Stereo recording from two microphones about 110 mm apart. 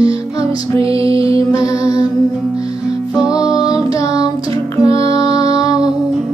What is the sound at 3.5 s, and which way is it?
Music, 35° left (ahead or behind).